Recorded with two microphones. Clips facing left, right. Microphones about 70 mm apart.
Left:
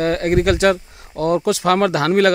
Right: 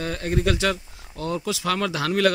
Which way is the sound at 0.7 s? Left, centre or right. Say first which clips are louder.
Left 9 dB; left.